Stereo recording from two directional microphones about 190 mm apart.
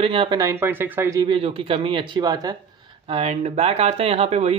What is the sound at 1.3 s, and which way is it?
Speech, 30° right (ahead or behind).